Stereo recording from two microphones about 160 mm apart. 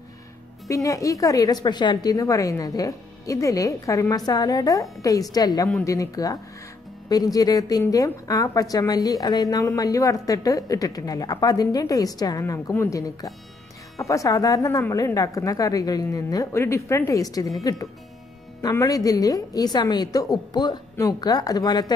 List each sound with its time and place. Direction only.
0.7 s a woman's voice: 20° left (ahead or behind)
7.3 s a woman's voice: 25° left (ahead or behind)
18.6 s a woman's voice: 20° left (ahead or behind)